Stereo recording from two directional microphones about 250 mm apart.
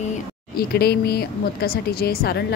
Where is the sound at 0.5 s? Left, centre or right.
Left.